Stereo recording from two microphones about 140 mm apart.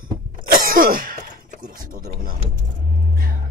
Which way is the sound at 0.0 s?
90° right.